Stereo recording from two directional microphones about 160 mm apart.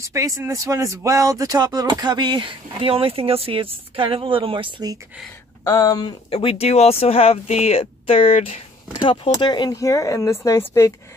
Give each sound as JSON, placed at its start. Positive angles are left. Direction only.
{"t": 0.0, "sound": "speech", "side_deg": -20}
{"t": 5.6, "sound": "speech", "side_deg": 20}
{"t": 6.3, "sound": "speech", "side_deg": 40}